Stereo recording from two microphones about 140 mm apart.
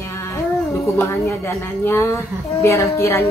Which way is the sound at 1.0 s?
20° left (ahead or behind).